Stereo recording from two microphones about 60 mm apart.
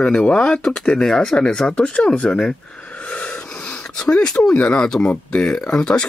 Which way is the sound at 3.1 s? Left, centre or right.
Centre.